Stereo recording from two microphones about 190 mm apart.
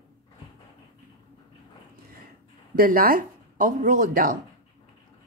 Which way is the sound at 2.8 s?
50° right (ahead or behind).